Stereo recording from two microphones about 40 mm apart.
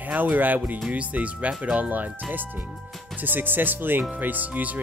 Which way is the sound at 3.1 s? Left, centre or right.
Right.